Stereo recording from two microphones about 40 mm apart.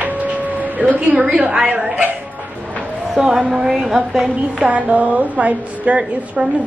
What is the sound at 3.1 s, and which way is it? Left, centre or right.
A woman's voice, centre.